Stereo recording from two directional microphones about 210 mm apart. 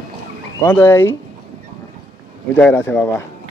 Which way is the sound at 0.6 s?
10° left (ahead or behind).